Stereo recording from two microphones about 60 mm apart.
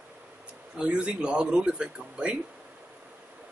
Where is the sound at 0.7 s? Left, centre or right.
Centre.